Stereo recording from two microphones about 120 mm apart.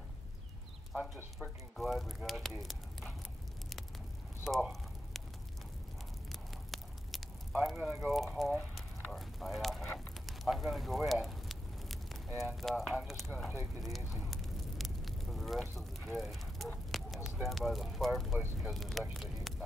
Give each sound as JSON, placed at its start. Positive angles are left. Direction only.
{"t": 0.9, "sound": "speech", "side_deg": 0}
{"t": 2.6, "sound": "a sound", "side_deg": 0}
{"t": 4.5, "sound": "a sound", "side_deg": -5}
{"t": 6.7, "sound": "a sound", "side_deg": 0}
{"t": 9.0, "sound": "speech", "side_deg": 0}
{"t": 9.9, "sound": "fire", "side_deg": 0}
{"t": 12.4, "sound": "speech", "side_deg": 0}
{"t": 14.2, "sound": "fire", "side_deg": 0}
{"t": 17.4, "sound": "speech", "side_deg": 0}